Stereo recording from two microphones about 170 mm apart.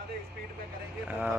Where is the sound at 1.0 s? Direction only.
10° right (ahead or behind).